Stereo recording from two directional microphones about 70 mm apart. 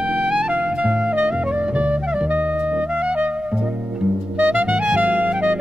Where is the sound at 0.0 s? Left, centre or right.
Centre.